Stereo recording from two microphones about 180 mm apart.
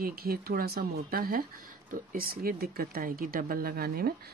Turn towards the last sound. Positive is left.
turn(degrees=-55)  # may be behind; listen again after turning